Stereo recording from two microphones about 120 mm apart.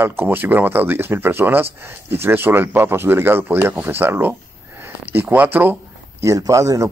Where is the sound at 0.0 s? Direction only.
20° right (ahead or behind).